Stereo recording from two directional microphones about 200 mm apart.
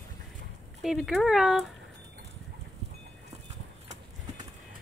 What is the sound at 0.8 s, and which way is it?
Speech, centre (ahead or behind).